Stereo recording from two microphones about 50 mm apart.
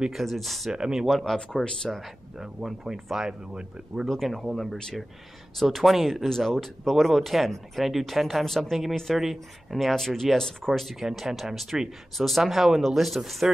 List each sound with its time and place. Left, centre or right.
0.1 s speech: centre
0.7 s speech: centre
1.0 s speech: centre
4.1 s speech: centre